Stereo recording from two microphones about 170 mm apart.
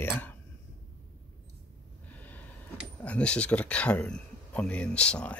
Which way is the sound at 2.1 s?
10° left (ahead or behind).